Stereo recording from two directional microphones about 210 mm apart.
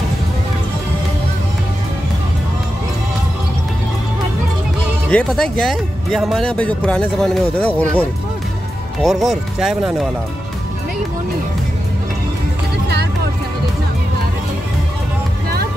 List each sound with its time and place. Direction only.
5.1 s speech: 5° left (ahead or behind)
9.0 s speech: centre (ahead or behind)